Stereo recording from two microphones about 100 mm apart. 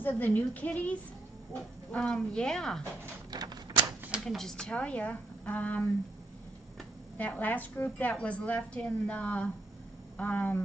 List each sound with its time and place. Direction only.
0.0 s a woman's voice: 20° left (ahead or behind)
3.3 s typewriter: 40° right (ahead or behind)
4.1 s speech: centre (ahead or behind)
7.2 s a woman's voice: 15° left (ahead or behind)